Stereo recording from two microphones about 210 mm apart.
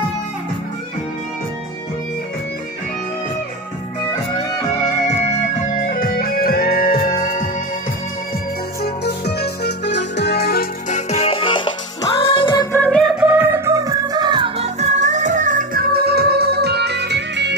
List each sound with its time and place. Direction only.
5.1 s music: 30° left (ahead or behind)
8.8 s music: 50° left (ahead or behind); by 12.6 s 20° left (ahead or behind)
12.7 s music: 5° left (ahead or behind); by 17.6 s 55° right (ahead or behind)